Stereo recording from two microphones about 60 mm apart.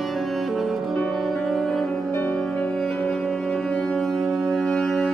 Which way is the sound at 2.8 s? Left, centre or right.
Left.